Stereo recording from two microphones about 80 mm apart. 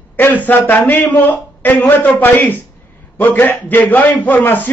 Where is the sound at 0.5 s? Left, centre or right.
Left.